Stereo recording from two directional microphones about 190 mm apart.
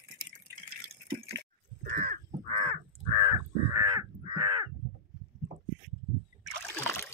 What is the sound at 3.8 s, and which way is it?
Crow, 20° right (ahead or behind).